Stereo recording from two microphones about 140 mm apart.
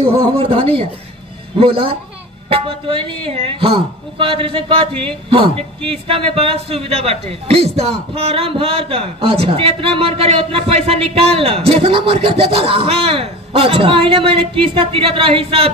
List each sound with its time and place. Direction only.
0.0 s a man's voice: 40° right (ahead or behind)